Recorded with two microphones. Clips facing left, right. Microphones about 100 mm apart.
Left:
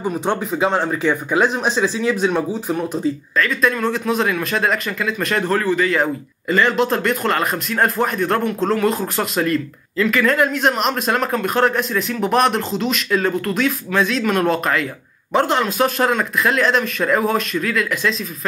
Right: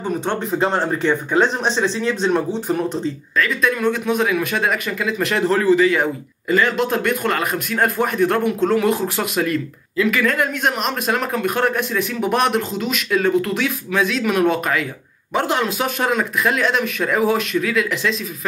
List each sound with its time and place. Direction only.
0.5 s a man's voice: centre (ahead or behind); by 5.9 s 20° right (ahead or behind)
6.5 s a man's voice: 5° right (ahead or behind)